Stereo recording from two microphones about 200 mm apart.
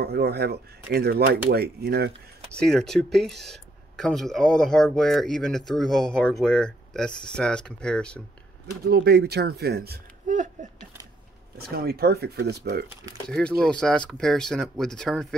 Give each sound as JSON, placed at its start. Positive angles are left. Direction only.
{"t": 0.0, "sound": "speech", "side_deg": -50}
{"t": 2.5, "sound": "speech", "side_deg": 0}
{"t": 8.8, "sound": "speech", "side_deg": -55}
{"t": 11.5, "sound": "speech", "side_deg": -50}
{"t": 13.3, "sound": "speech", "side_deg": 5}